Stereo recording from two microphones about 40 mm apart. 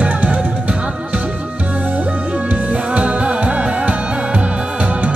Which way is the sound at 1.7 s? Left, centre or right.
Right.